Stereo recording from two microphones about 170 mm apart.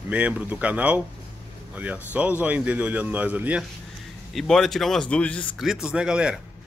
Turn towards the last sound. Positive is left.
turn(degrees=-5)  # may be behind; listen again after turning